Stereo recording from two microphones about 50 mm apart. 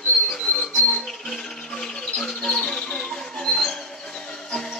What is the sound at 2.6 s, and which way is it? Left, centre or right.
Music, centre.